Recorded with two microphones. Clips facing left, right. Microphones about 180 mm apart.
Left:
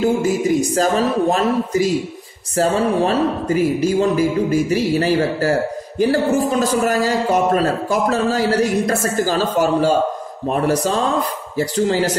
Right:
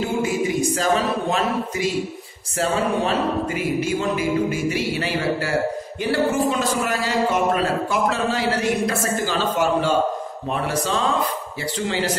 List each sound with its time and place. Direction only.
0.2 s speech: 40° left (ahead or behind)